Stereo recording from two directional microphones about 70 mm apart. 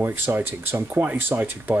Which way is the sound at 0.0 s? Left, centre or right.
Right.